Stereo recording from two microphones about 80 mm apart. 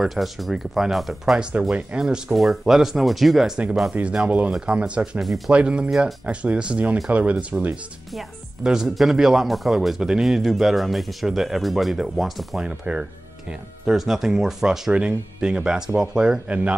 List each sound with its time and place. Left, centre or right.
0.0 s a man's voice: centre
5.9 s a man's voice: centre
6.2 s speech: centre
8.6 s a man's voice: centre